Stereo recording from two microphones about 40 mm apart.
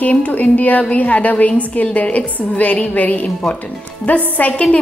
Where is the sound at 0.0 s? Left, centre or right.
Left.